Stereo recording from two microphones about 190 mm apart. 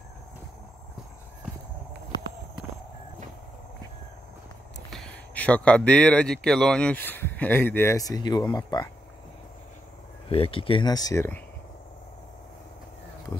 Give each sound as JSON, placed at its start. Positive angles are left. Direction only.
{"t": 4.9, "sound": "speech", "side_deg": 5}
{"t": 10.3, "sound": "speech", "side_deg": 30}